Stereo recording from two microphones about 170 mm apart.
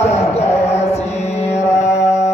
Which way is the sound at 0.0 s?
40° left (ahead or behind).